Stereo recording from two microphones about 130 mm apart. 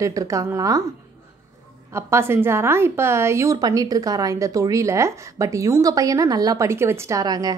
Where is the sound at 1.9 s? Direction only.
20° right (ahead or behind).